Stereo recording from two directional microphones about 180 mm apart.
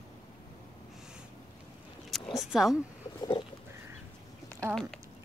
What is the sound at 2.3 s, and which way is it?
Speech, centre (ahead or behind).